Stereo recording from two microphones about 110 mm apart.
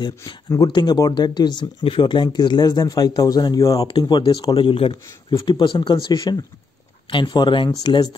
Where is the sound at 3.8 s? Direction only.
45° left (ahead or behind); by 5.4 s 60° left (ahead or behind).